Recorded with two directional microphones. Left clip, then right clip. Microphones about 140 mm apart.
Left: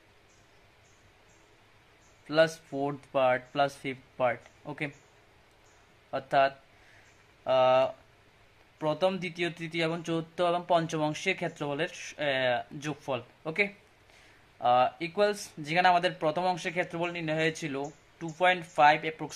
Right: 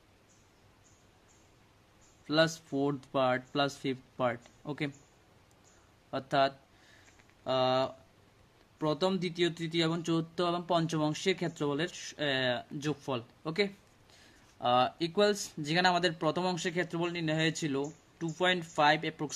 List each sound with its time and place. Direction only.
2.2 s speech: 30° right (ahead or behind)
6.0 s speech: 30° right (ahead or behind)